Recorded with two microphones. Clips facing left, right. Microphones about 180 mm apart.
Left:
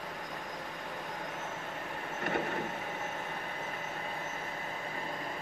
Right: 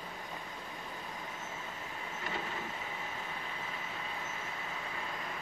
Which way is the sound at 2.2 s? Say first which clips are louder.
Left 8 dB; 60° left (ahead or behind).